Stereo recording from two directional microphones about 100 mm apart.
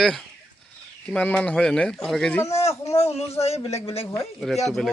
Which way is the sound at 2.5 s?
90° left.